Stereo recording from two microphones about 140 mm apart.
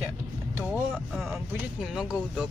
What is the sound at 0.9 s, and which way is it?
Speech, centre (ahead or behind).